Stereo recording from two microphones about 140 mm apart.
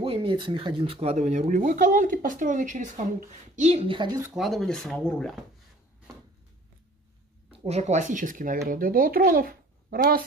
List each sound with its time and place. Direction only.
0.0 s speech: 40° right (ahead or behind)
1.1 s speech: 55° right (ahead or behind); by 4.2 s 35° right (ahead or behind)
4.2 s speech: 5° right (ahead or behind)
7.5 s speech: 50° right (ahead or behind); by 8.5 s 70° right (ahead or behind)
8.6 s a child's voice: 85° right